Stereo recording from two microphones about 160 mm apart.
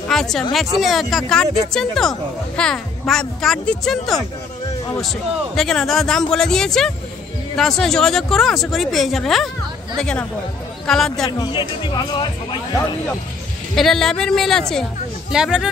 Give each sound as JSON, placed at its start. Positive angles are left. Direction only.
{"t": 0.1, "sound": "a woman's voice", "side_deg": 0}
{"t": 5.6, "sound": "a woman's voice", "side_deg": 0}
{"t": 11.2, "sound": "speech", "side_deg": 25}
{"t": 13.7, "sound": "a woman's voice", "side_deg": 0}